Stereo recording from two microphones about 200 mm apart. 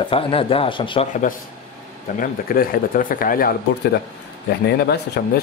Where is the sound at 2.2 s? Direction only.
45° left (ahead or behind).